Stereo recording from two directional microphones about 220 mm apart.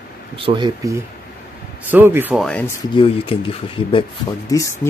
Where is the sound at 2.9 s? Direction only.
25° left (ahead or behind).